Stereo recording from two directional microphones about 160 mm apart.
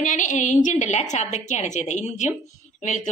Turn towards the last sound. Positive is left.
turn(degrees=50)  # may be behind; listen again after turning